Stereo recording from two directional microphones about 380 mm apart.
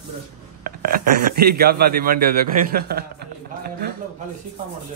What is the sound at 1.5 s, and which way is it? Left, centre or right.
A man's voice, right.